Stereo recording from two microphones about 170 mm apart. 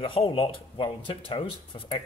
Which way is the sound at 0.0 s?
30° left (ahead or behind).